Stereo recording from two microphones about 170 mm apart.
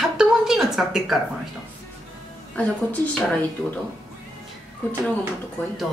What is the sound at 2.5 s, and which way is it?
Speech, 10° left (ahead or behind).